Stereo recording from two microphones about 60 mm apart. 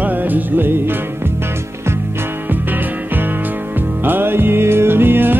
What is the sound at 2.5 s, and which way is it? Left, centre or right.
Music, right.